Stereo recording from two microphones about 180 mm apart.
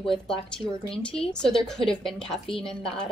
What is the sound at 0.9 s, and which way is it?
Speech, 30° left (ahead or behind).